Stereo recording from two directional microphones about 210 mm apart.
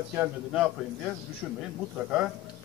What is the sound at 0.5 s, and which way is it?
Speech, 5° right (ahead or behind).